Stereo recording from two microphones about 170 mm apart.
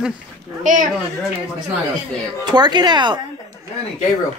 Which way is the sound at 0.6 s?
50° right (ahead or behind).